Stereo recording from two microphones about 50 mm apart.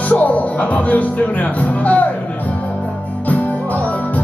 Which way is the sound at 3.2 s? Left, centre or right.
Left.